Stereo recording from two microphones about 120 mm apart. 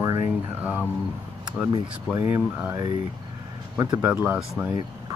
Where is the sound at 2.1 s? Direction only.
15° right (ahead or behind).